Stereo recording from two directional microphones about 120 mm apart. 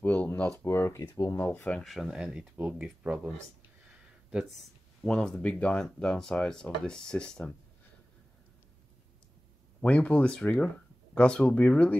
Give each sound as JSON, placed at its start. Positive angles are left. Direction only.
{"t": 0.0, "sound": "speech", "side_deg": 15}
{"t": 1.4, "sound": "speech", "side_deg": 15}
{"t": 1.9, "sound": "speech", "side_deg": -5}
{"t": 9.8, "sound": "speech", "side_deg": 10}